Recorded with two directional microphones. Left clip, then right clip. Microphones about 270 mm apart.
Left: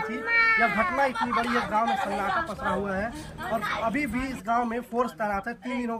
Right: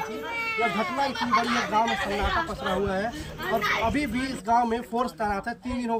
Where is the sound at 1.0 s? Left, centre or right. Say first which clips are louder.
Right 1 dB; centre.